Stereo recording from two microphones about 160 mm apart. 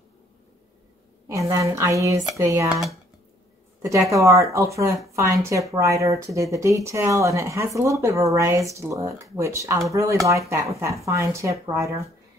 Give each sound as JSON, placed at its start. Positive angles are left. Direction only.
{"t": 1.3, "sound": "speech", "side_deg": -20}
{"t": 2.7, "sound": "speech", "side_deg": 0}
{"t": 4.1, "sound": "speech", "side_deg": -20}